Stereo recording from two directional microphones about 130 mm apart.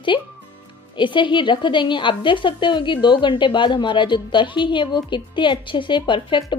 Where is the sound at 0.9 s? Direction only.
40° left (ahead or behind).